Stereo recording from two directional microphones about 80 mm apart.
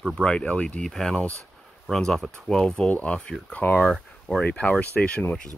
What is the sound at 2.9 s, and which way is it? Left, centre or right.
Speech, centre.